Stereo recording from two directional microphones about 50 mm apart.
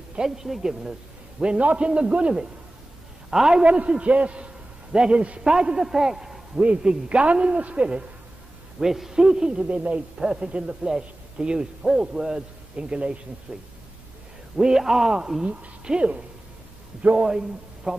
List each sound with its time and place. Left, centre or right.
0.1 s a man's voice: centre
1.6 s a man's voice: right; by 3.6 s centre
3.6 s a man's voice: right
6.6 s a man's voice: centre
8.7 s a man's voice: centre; by 13.6 s right
14.6 s a man's voice: centre
15.4 s a man's voice: right